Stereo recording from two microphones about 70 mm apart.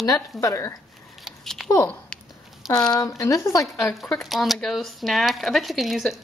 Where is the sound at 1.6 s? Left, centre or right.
Centre.